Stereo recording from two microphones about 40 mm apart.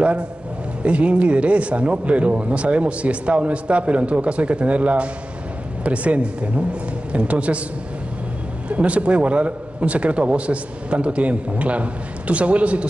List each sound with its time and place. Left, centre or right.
0.8 s speech: right
8.6 s speech: right